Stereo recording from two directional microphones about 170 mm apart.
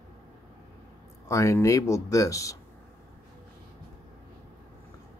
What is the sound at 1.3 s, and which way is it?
Speech, 20° left (ahead or behind).